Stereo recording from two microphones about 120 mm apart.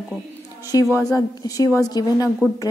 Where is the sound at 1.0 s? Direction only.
30° left (ahead or behind).